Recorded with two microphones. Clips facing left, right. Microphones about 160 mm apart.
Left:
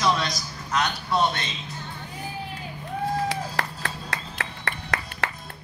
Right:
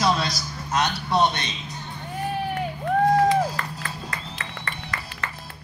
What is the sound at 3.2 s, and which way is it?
Music, 75° left (ahead or behind).